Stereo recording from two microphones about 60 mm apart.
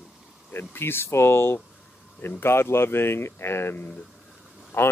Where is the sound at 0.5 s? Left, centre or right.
Left.